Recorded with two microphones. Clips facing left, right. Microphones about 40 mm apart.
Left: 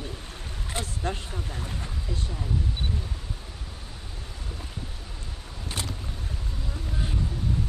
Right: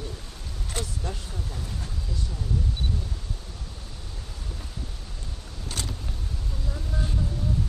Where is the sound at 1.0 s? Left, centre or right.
Left.